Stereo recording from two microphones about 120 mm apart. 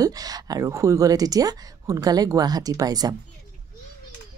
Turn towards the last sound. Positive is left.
turn(degrees=-30)  # may be behind; listen again after turning